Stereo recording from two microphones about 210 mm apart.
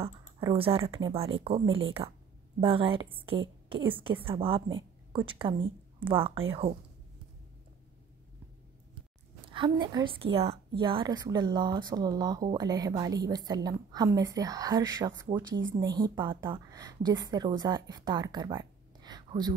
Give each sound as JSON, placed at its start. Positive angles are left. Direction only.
{"t": 0.4, "sound": "a woman's voice", "side_deg": -25}
{"t": 9.5, "sound": "a woman's voice", "side_deg": -20}